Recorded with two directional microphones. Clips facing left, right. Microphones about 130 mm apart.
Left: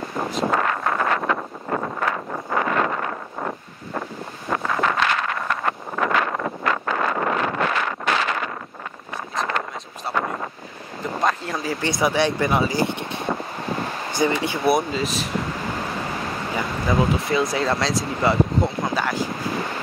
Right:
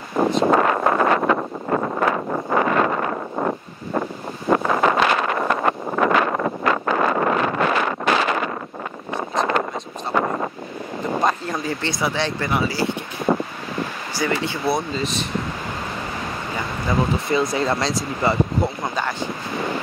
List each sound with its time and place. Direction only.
0.5 s wind noise: 25° right (ahead or behind)
2.5 s wind noise: 25° right (ahead or behind)
4.5 s wind noise: 25° right (ahead or behind)
9.1 s vehicle: 25° right (ahead or behind)
10.1 s wind: 20° right (ahead or behind)
11.1 s a sound: centre (ahead or behind)
12.0 s speech: 15° left (ahead or behind)
15.0 s speech: 5° left (ahead or behind)
16.8 s speech: centre (ahead or behind)